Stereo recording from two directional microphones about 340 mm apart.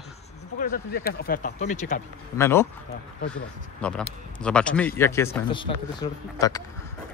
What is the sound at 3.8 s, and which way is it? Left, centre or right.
Speech, centre.